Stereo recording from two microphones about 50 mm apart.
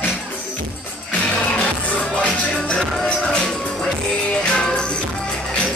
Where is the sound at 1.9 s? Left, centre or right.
Left.